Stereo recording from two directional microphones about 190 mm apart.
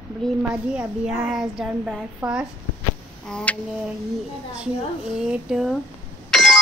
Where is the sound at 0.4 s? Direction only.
5° right (ahead or behind).